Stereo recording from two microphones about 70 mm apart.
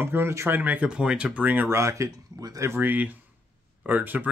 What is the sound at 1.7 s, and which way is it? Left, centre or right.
Speech, right.